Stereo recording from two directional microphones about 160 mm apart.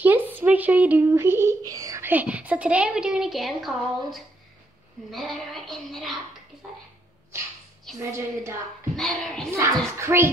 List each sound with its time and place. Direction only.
0.0 s speech: 10° right (ahead or behind)
8.0 s a woman's voice: 15° right (ahead or behind)
8.9 s speech: centre (ahead or behind)
9.9 s a woman's voice: 15° right (ahead or behind)